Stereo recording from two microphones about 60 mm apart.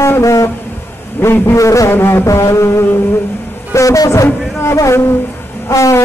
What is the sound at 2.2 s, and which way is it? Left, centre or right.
Speech, left.